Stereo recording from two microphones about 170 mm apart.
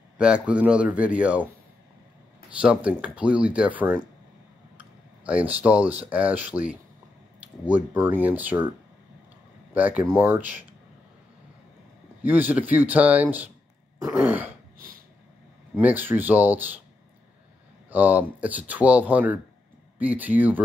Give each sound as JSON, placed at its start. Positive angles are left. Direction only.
{"t": 0.2, "sound": "speech", "side_deg": -5}
{"t": 2.6, "sound": "speech", "side_deg": -5}
{"t": 4.7, "sound": "tick-tock", "side_deg": -10}
{"t": 5.9, "sound": "speech", "side_deg": -10}
{"t": 9.8, "sound": "speech", "side_deg": -10}
{"t": 12.2, "sound": "speech", "side_deg": -10}
{"t": 15.8, "sound": "speech", "side_deg": -10}
{"t": 17.8, "sound": "speech", "side_deg": -10}